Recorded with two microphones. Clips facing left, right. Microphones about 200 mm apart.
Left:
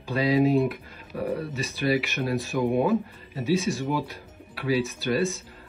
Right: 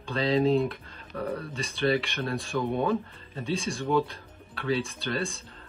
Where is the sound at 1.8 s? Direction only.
10° left (ahead or behind).